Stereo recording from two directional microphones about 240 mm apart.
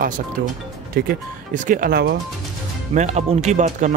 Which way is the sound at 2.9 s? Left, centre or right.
Right.